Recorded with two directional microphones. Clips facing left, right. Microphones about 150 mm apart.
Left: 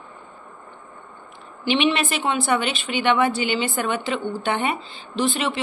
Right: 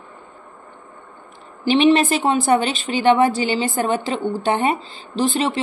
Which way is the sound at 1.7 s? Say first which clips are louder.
Right 6 dB; 40° right (ahead or behind).